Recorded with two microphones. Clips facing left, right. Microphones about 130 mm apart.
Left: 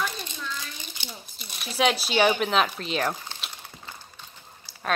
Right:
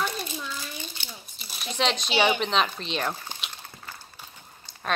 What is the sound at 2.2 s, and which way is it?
Speech, 5° left (ahead or behind).